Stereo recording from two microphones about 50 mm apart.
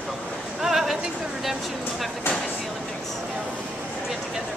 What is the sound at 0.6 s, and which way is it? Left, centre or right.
Speech, centre.